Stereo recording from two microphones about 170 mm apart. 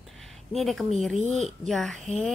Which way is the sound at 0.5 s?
Centre (ahead or behind).